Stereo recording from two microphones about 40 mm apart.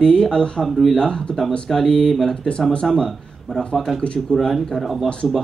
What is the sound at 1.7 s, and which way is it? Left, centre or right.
A man's voice, centre.